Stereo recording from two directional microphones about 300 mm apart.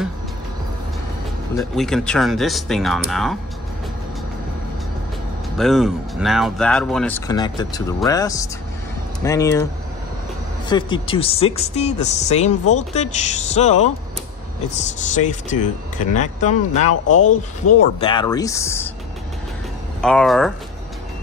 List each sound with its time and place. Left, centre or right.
1.6 s speech: centre
5.6 s speech: centre
10.7 s speech: centre
17.2 s speech: left
18.0 s speech: centre
20.0 s speech: centre